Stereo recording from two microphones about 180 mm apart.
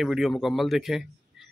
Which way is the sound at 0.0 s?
Centre (ahead or behind).